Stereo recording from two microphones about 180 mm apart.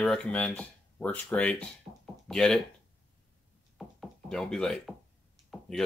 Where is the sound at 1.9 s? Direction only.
35° right (ahead or behind).